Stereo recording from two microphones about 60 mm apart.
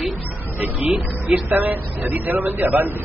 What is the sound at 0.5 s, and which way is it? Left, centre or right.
A man's voice, right.